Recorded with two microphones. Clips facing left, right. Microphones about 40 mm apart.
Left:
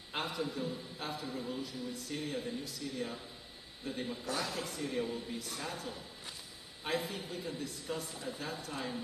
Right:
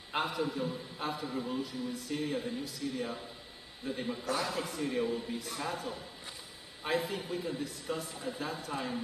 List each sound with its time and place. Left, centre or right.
0.1 s a man's voice: centre
8.7 s a man's voice: centre